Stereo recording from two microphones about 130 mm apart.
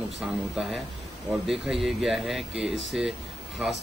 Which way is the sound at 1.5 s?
Centre (ahead or behind).